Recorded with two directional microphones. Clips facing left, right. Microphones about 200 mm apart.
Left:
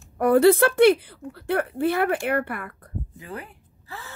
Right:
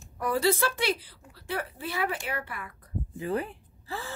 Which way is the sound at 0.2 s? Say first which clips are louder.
Left 10 dB; 60° left (ahead or behind).